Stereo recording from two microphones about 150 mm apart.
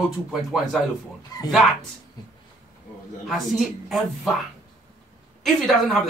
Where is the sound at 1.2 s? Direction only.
25° left (ahead or behind).